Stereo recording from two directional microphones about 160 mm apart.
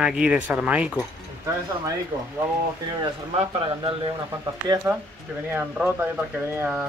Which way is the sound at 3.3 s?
40° right (ahead or behind).